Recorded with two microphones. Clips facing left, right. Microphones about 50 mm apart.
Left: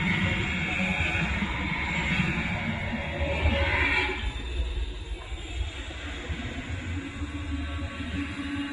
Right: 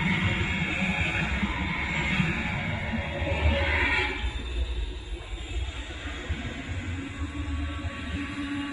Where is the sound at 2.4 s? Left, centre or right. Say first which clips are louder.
Even; right.